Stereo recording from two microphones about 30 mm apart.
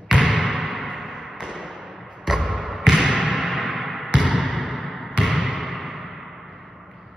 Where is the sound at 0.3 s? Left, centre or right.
Right.